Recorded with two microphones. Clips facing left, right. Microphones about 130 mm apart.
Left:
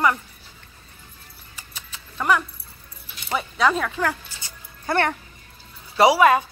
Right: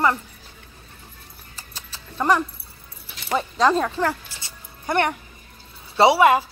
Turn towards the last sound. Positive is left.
turn(degrees=-25)  # may be behind; listen again after turning